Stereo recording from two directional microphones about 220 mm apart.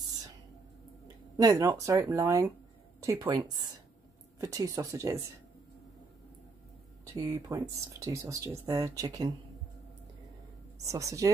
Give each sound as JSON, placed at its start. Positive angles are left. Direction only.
{"t": 1.3, "sound": "speech", "side_deg": -15}
{"t": 7.2, "sound": "speech", "side_deg": -15}
{"t": 10.9, "sound": "speech", "side_deg": -15}